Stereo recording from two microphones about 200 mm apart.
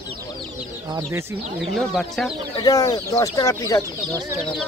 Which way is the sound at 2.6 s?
20° left (ahead or behind).